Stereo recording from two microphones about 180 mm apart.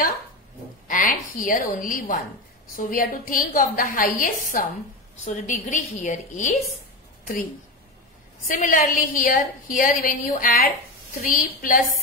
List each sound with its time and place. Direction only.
0.8 s a woman's voice: 50° left (ahead or behind)
8.5 s a woman's voice: 50° left (ahead or behind)